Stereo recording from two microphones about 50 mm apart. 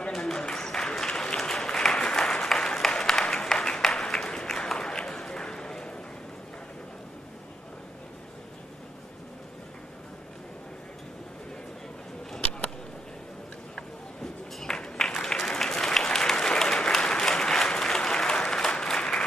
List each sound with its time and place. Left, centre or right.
0.1 s applause: centre
12.4 s a sound: left
13.7 s applause: centre